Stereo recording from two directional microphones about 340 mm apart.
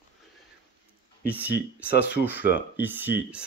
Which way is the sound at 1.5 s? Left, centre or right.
Left.